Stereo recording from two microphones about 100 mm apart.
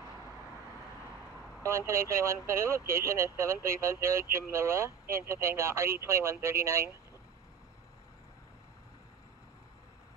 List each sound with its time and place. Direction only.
1.6 s speech: 30° right (ahead or behind)